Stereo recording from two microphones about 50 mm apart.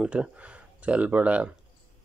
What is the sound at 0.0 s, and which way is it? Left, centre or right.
Speech, right.